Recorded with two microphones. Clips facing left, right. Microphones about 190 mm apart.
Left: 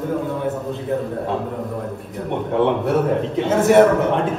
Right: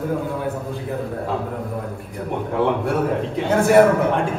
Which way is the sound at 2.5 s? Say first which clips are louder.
Left 3 dB; centre (ahead or behind).